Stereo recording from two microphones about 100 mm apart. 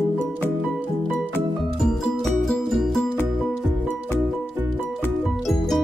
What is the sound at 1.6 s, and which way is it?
Music, centre (ahead or behind).